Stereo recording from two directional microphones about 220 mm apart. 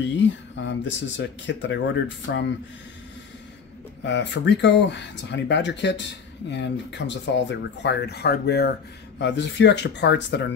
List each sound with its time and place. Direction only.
0.1 s speech: 55° left (ahead or behind)
4.0 s speech: 55° left (ahead or behind)